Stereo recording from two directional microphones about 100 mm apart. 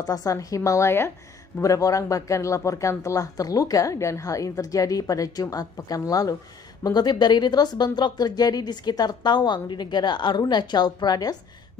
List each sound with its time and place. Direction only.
0.0 s speech: 40° left (ahead or behind)